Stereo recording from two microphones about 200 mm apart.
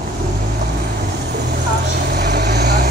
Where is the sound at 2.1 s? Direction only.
55° right (ahead or behind).